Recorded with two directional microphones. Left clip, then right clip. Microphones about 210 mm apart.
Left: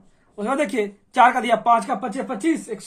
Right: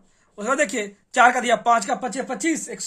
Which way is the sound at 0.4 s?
15° right (ahead or behind).